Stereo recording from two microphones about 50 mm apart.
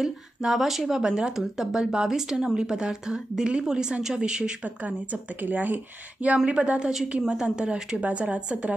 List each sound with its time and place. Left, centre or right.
0.0 s speech: centre
4.8 s speech: right